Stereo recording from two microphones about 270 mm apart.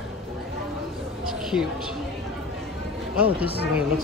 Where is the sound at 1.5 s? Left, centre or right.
Centre.